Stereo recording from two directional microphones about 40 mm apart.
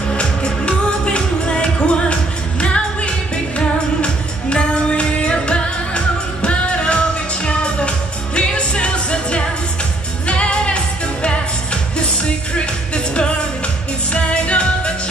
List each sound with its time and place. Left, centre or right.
0.1 s music: left
2.6 s music of asia: left
3.5 s music: left
12.5 s music: left